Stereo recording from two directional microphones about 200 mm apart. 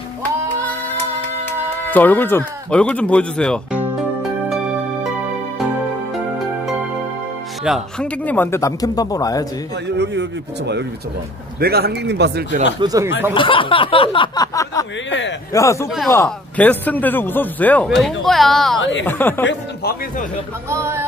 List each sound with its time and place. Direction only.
1.9 s speech: 10° left (ahead or behind)
7.6 s speech: centre (ahead or behind); by 9.5 s 15° left (ahead or behind)
9.8 s speech: 60° right (ahead or behind)
11.6 s speech: 55° right (ahead or behind)
12.8 s speech: 15° right (ahead or behind)
13.3 s speech: 25° left (ahead or behind)
15.0 s a man's voice: 65° left (ahead or behind)
15.5 s speech: 15° left (ahead or behind)
18.8 s a man's voice: 70° left (ahead or behind)
19.0 s speech: 10° left (ahead or behind)
19.4 s speech: 50° left (ahead or behind)
20.7 s speech: 15° right (ahead or behind)